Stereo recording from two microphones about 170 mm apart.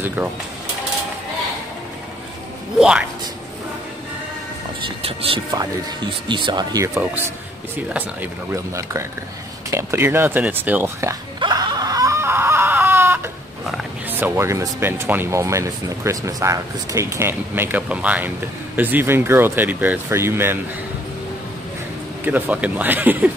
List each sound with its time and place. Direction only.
0.0 s speech: 10° right (ahead or behind)
2.8 s speech: 5° right (ahead or behind)
4.8 s speech: 35° right (ahead or behind)
7.7 s speech: 10° right (ahead or behind)
9.7 s speech: 15° right (ahead or behind)
11.3 s a sound: 25° right (ahead or behind)
14.2 s speech: 15° right (ahead or behind)
22.2 s speech: 10° right (ahead or behind)